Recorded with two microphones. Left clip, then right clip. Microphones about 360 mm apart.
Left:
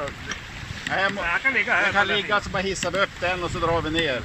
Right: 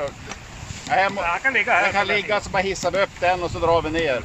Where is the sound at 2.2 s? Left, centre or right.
Centre.